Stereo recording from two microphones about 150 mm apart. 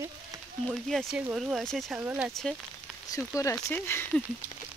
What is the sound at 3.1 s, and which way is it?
Speech, 25° left (ahead or behind).